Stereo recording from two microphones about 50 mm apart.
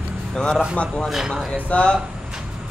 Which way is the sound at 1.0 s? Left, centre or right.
Centre.